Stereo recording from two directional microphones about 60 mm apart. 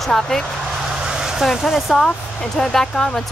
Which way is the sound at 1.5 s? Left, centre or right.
Centre.